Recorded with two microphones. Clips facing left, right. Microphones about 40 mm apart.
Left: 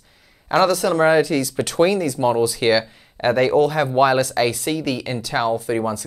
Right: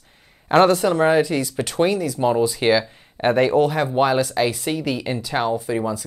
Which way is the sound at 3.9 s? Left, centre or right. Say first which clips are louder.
Left 5 dB; centre.